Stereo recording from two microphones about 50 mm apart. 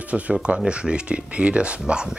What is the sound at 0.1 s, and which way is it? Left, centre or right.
Speech, right.